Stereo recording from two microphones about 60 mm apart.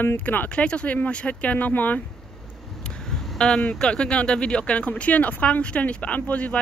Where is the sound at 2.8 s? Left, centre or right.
Centre.